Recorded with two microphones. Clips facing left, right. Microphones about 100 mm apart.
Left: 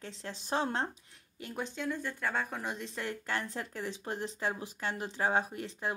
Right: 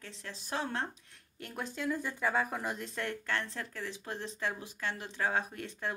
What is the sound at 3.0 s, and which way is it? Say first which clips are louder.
Speech: even; 10° left (ahead or behind).